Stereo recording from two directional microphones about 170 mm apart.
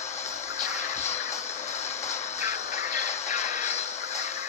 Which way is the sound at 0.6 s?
40° left (ahead or behind).